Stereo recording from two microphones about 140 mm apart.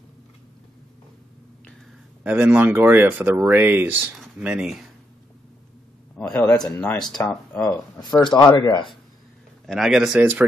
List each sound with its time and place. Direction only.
2.2 s speech: 10° right (ahead or behind)
6.1 s speech: 10° left (ahead or behind)
8.2 s speech: 35° left (ahead or behind)
9.7 s speech: centre (ahead or behind)